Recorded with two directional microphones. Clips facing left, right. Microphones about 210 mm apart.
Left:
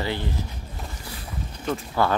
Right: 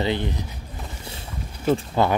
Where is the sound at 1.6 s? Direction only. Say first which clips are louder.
Right 4 dB; 25° right (ahead or behind).